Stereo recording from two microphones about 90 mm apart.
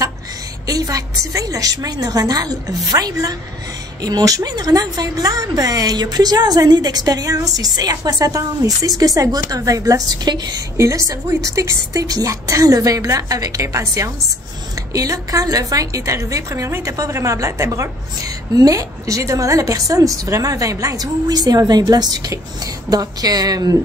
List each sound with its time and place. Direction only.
0.7 s a woman's voice: 40° right (ahead or behind)
10.8 s a woman's voice: 40° right (ahead or behind)